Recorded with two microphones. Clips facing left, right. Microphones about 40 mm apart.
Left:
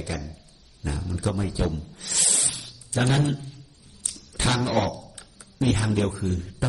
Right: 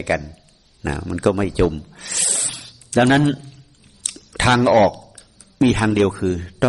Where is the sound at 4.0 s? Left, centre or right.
Right.